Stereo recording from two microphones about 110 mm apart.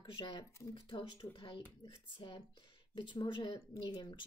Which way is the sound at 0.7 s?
55° left (ahead or behind).